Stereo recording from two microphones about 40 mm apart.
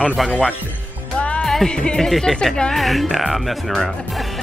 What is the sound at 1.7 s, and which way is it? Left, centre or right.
Speech, left.